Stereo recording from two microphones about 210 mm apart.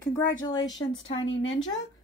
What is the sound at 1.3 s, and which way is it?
Speech, 65° left (ahead or behind).